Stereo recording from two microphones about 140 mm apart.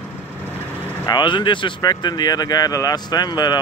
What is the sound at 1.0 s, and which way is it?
Speech, 30° left (ahead or behind).